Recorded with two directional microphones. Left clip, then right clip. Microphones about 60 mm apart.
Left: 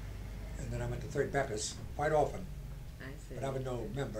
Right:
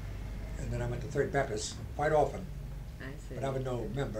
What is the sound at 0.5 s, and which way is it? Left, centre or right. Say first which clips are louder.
A man's voice: right 3 dB; left.